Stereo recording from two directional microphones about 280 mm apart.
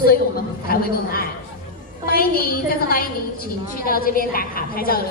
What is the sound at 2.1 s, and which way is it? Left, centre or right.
A woman's voice, left.